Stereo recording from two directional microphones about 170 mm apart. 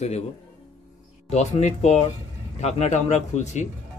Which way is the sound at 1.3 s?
40° left (ahead or behind).